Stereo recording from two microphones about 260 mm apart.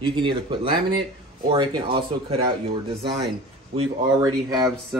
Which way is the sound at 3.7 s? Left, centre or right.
Centre.